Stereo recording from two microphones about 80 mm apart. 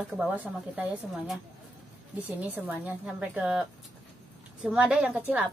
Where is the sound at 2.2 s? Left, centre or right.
Centre.